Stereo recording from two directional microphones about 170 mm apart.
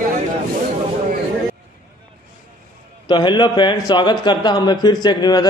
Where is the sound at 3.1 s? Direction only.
25° left (ahead or behind).